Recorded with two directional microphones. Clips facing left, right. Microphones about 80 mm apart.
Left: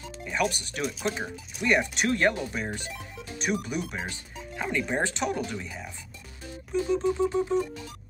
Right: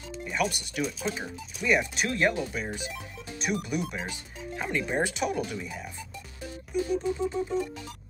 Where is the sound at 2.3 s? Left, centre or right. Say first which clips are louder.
Left 2 dB; left.